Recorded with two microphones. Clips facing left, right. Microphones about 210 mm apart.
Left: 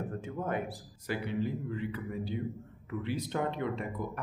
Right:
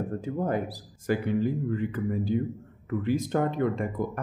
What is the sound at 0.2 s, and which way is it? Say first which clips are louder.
A man's voice: right 6 dB; 35° right (ahead or behind).